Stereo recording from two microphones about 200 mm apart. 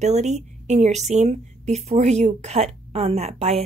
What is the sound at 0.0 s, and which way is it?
A woman's voice, 35° right (ahead or behind).